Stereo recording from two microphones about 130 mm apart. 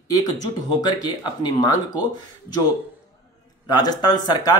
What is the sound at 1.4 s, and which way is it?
Speech, 30° left (ahead or behind).